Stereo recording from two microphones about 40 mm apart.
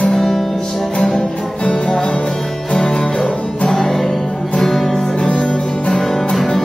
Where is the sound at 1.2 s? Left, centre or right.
Left; by 5.1 s centre.